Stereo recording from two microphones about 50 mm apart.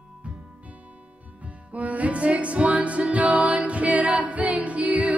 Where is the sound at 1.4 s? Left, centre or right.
Right.